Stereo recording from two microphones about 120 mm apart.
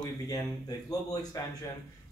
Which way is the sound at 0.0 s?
30° left (ahead or behind).